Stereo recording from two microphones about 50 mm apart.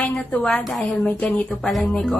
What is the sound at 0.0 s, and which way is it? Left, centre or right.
Speech, centre.